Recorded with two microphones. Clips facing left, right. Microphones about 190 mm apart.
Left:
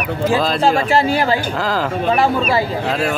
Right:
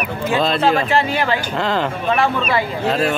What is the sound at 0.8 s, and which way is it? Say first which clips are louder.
Speech: left 3 dB; 40° left (ahead or behind).